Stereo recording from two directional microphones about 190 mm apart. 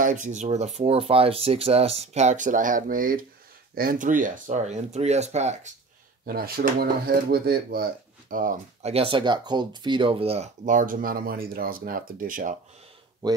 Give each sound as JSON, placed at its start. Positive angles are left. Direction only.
{"t": 0.0, "sound": "speech", "side_deg": -40}
{"t": 6.2, "sound": "speech", "side_deg": -50}
{"t": 8.9, "sound": "speech", "side_deg": -30}